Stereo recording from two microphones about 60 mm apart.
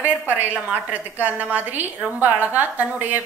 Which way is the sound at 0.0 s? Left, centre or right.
Right.